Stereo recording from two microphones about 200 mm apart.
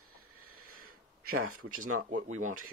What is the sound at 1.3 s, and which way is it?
Speech, 90° right.